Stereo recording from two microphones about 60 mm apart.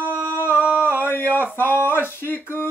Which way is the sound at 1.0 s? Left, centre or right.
Left.